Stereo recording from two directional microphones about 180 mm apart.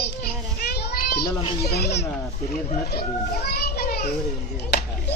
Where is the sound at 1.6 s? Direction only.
65° left (ahead or behind).